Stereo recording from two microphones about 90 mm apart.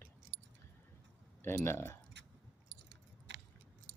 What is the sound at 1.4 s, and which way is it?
Speech, 25° left (ahead or behind).